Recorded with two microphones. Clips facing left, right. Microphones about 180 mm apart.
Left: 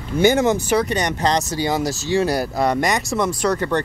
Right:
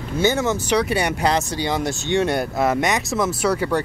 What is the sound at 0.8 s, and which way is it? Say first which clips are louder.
Speech: even; 10° right (ahead or behind).